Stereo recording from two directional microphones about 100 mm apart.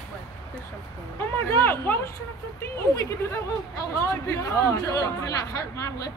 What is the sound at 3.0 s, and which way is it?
Speech, 35° left (ahead or behind).